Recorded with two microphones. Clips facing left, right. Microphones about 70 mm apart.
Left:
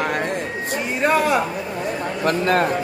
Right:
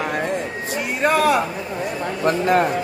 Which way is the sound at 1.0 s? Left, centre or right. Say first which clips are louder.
Right 1 dB; centre.